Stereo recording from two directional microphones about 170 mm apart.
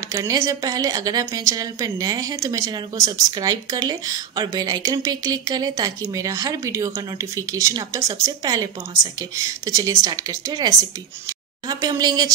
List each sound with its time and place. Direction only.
0.1 s a woman's voice: 20° right (ahead or behind)